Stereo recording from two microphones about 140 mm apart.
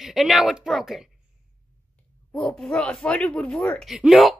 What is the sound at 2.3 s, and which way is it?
Speech, 5° left (ahead or behind).